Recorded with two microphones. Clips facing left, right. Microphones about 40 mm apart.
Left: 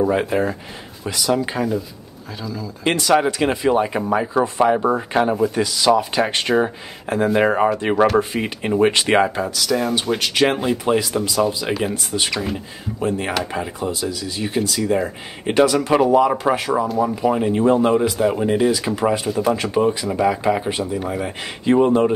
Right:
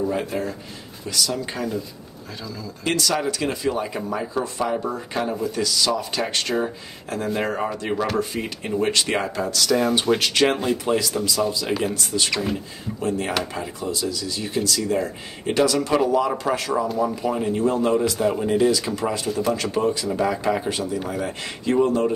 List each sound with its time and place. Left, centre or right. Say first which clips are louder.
0.0 s speech: left 6 dB; left
2.4 s speech: left 6 dB; centre
2.8 s speech: left 6 dB; left
9.4 s speech: even; centre
12.5 s speech: left 3 dB; centre
16.8 s speech: left 3 dB; centre
17.1 s speech: left 5 dB; left
18.1 s speech: left 3 dB; centre